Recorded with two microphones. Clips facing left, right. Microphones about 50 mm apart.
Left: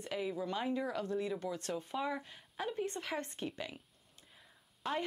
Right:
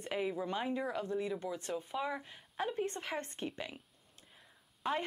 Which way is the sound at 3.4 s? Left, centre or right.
Centre.